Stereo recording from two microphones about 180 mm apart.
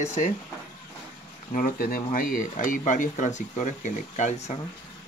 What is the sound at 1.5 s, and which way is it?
Speech, 50° left (ahead or behind).